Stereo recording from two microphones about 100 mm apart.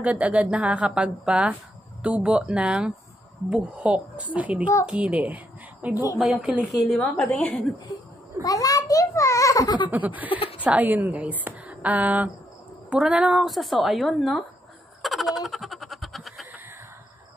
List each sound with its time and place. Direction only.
0.0 s a woman's voice: 15° right (ahead or behind)
6.1 s speech: 5° right (ahead or behind)
6.9 s a woman's voice: 10° left (ahead or behind)
7.9 s a child's voice: 35° left (ahead or behind)
9.8 s a woman's voice: 15° right (ahead or behind); by 14.4 s centre (ahead or behind)
15.0 s baby laughter: centre (ahead or behind)